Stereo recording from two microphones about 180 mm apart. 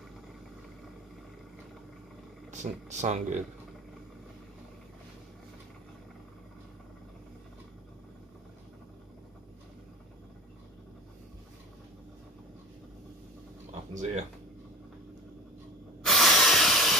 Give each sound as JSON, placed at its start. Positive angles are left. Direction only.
{"t": 2.5, "sound": "speech", "side_deg": -40}
{"t": 13.7, "sound": "a sound", "side_deg": -40}
{"t": 16.0, "sound": "spray", "side_deg": 0}